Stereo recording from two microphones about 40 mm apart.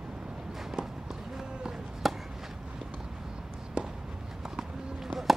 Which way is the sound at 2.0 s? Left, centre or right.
Centre.